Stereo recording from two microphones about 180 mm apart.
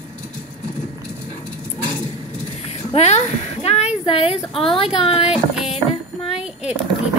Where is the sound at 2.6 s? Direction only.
35° left (ahead or behind).